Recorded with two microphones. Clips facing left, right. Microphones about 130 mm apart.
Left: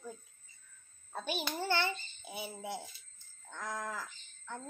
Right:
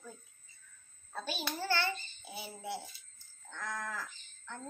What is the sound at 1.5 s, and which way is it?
A child's voice, 20° left (ahead or behind).